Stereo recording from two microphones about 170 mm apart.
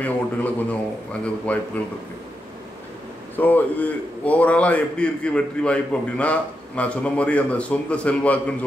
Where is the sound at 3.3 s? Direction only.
10° left (ahead or behind).